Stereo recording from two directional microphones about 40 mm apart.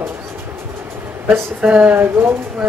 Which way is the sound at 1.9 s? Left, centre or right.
Right.